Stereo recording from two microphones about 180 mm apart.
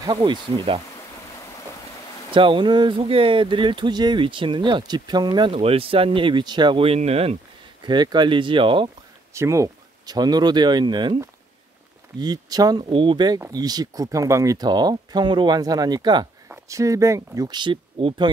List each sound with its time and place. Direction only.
0.0 s speech: 25° right (ahead or behind)
2.3 s speech: 30° right (ahead or behind)
9.3 s speech: 15° right (ahead or behind)